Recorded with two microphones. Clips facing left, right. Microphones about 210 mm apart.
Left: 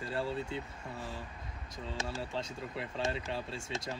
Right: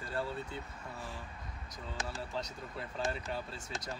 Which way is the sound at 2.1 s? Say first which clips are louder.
Left 2 dB; 25° left (ahead or behind).